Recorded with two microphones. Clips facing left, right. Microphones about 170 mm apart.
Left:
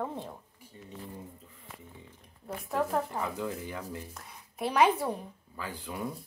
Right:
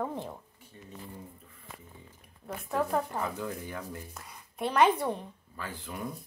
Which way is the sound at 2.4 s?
Centre (ahead or behind).